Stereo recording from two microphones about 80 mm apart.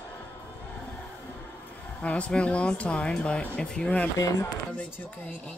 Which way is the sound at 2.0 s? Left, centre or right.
Centre.